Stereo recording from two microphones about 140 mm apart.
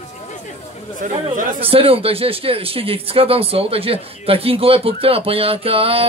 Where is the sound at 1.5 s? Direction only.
45° right (ahead or behind).